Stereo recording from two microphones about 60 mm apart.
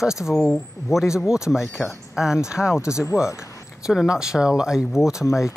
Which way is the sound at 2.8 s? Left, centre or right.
Left.